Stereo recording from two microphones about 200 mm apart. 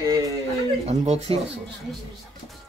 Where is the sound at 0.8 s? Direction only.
30° right (ahead or behind).